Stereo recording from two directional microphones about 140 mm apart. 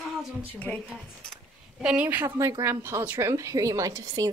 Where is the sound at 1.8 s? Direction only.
10° right (ahead or behind).